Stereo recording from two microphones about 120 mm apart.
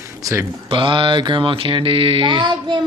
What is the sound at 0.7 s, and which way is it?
Mantra, 45° right (ahead or behind).